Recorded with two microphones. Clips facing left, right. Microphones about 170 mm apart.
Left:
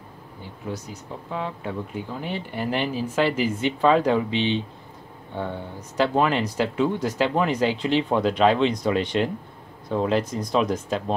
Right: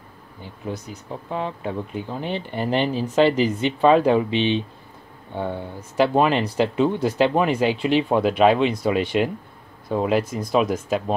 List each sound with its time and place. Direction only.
1.3 s speech: 20° right (ahead or behind)